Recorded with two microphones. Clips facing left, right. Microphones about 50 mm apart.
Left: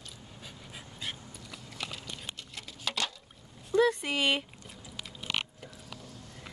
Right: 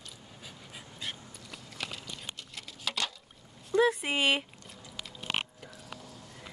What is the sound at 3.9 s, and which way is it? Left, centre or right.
Speech, centre.